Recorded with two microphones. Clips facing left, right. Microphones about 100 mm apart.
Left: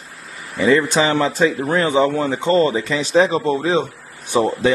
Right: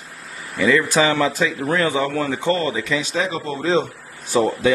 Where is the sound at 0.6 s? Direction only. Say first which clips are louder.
Left 2 dB; 25° left (ahead or behind).